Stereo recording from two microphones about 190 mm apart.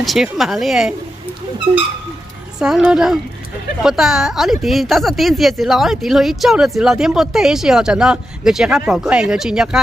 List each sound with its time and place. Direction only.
0.0 s speech: centre (ahead or behind)
1.7 s speech: 25° right (ahead or behind)
2.6 s speech: 5° right (ahead or behind)